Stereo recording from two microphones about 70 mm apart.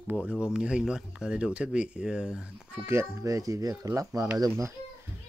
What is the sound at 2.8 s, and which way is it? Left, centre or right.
Speech, right.